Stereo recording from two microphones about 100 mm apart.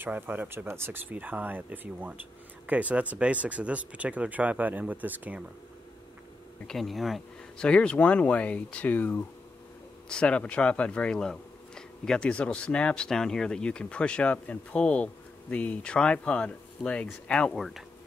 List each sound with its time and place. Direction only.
0.0 s speech: 20° right (ahead or behind)
6.7 s speech: centre (ahead or behind)